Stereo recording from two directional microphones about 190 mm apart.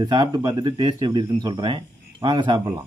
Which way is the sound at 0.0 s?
20° right (ahead or behind).